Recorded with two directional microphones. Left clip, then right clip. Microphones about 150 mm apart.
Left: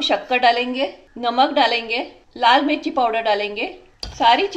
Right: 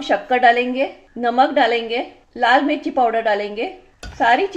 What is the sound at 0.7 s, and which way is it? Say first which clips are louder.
A woman's voice: right 2 dB; 35° right (ahead or behind).